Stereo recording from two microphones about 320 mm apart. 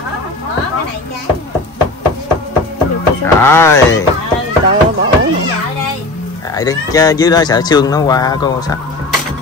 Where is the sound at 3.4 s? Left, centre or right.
Centre.